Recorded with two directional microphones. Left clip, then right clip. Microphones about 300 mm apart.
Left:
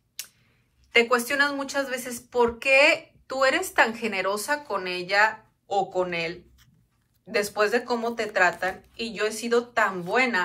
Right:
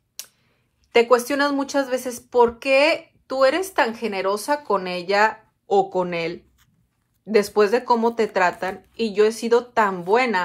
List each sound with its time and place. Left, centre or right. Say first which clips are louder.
0.2 s clicking: right 1 dB; centre
0.9 s speech: right 4 dB; centre